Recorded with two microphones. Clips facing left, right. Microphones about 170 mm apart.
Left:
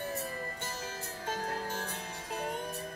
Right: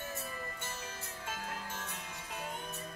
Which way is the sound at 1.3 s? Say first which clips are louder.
Left 7 dB; 35° left (ahead or behind).